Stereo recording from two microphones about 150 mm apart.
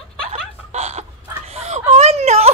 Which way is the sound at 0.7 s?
45° right (ahead or behind).